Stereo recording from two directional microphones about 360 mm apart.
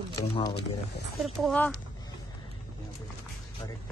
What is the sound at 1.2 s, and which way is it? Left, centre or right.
Speech, centre.